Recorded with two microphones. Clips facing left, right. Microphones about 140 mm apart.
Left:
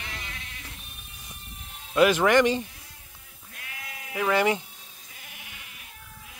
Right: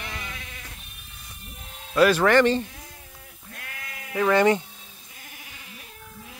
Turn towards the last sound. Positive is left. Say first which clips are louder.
# right 4 dB
turn(degrees=5)  # may be behind; listen again after turning